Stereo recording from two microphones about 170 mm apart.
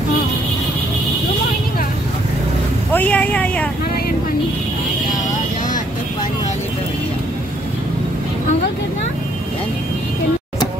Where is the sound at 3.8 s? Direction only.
65° left (ahead or behind).